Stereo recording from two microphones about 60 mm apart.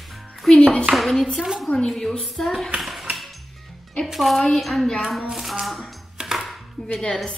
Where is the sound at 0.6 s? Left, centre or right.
Centre.